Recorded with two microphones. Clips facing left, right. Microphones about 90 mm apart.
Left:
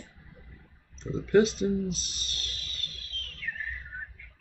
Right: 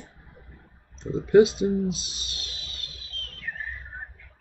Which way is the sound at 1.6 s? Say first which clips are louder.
Right 4 dB; 40° right (ahead or behind).